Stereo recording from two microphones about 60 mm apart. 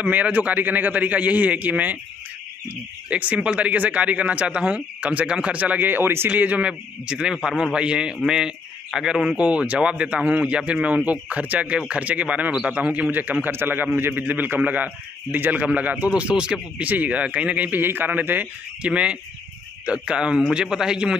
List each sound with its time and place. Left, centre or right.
0.0 s speech: right
3.1 s speech: right
6.3 s speech: right; by 9.4 s centre
9.4 s speech: centre
13.1 s a man's voice: right
17.7 s speech: right; by 21.2 s centre